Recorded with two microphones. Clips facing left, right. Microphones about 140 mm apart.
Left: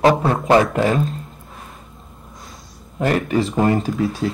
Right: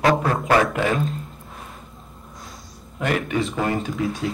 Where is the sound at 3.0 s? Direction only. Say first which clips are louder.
Left 4 dB; 35° left (ahead or behind).